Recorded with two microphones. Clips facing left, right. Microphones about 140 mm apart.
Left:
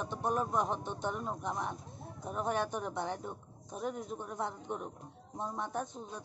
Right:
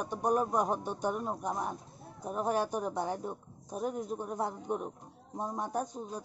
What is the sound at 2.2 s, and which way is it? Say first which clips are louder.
Speech: right 3 dB; 40° right (ahead or behind).